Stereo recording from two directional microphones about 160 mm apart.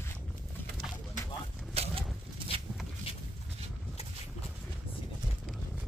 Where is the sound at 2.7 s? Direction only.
5° right (ahead or behind).